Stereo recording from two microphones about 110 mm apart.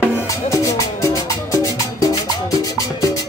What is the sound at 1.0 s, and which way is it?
Music, 30° left (ahead or behind).